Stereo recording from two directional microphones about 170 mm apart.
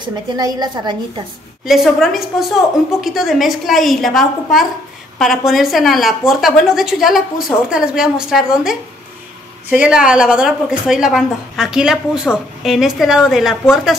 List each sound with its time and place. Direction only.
0.0 s a woman's voice: 25° right (ahead or behind)
1.6 s speech: centre (ahead or behind)